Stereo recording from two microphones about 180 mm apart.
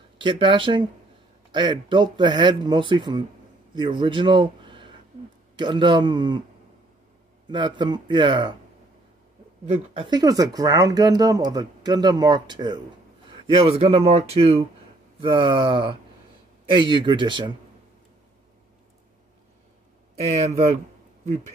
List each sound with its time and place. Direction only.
0.2 s a man's voice: 25° right (ahead or behind)
7.4 s speech: 25° right (ahead or behind)
9.9 s speech: 25° right (ahead or behind)
20.3 s speech: 35° right (ahead or behind)